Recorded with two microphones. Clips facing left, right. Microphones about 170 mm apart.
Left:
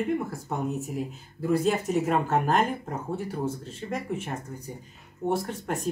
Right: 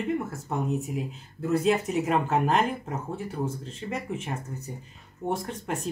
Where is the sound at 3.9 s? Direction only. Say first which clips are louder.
Left 2 dB; 10° left (ahead or behind).